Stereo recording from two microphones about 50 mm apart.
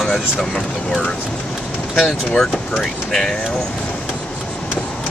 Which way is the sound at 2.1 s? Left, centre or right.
Centre.